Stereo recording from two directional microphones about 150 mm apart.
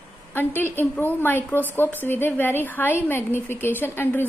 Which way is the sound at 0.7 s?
15° left (ahead or behind).